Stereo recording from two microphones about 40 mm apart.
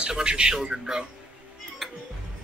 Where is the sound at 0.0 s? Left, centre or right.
Right.